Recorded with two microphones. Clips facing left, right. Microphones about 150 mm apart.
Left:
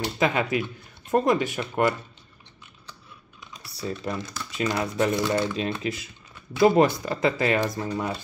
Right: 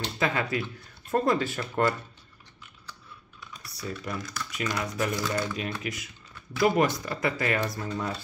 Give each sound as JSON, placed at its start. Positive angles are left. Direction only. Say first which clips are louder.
{"t": 0.0, "sound": "speech", "louder": "left 4 dB", "side_deg": 20}
{"t": 3.6, "sound": "speech", "louder": "left 5 dB", "side_deg": 25}